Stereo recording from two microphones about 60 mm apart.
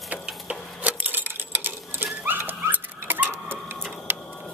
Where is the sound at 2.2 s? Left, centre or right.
Right.